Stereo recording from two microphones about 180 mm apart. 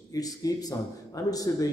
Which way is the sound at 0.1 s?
20° left (ahead or behind).